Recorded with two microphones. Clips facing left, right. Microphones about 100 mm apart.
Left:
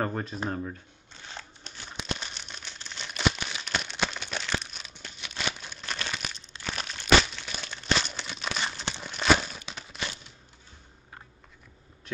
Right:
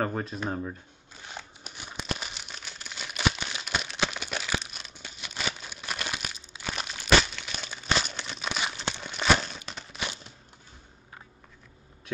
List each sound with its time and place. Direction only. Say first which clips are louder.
0.0 s speech: right 1 dB; centre (ahead or behind)
0.5 s crumpling: right 1 dB; 10° right (ahead or behind)
9.9 s a sound: right 1 dB; 15° right (ahead or behind)